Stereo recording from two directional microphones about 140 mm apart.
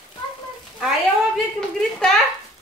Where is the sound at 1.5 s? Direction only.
5° left (ahead or behind).